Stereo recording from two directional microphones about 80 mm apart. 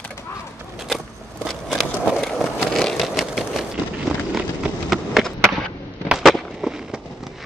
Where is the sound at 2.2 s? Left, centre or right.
Centre.